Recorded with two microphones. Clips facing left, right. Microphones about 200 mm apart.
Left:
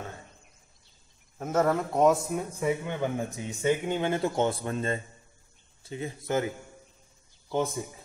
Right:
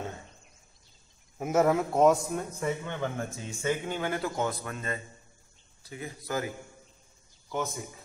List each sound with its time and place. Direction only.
1.4 s a man's voice: 10° right (ahead or behind); by 6.5 s 25° left (ahead or behind)